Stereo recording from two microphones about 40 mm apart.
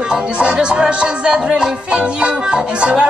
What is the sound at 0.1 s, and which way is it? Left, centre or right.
Music, right.